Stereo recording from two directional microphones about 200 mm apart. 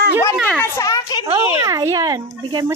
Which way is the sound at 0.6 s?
15° left (ahead or behind).